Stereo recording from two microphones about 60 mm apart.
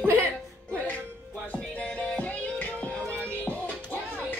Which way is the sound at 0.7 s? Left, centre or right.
Left.